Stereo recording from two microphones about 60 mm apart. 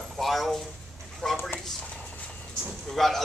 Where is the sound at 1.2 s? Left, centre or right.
Centre.